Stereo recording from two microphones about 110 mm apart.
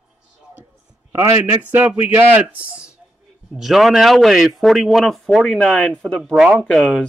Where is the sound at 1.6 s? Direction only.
15° right (ahead or behind); by 6.9 s 5° left (ahead or behind).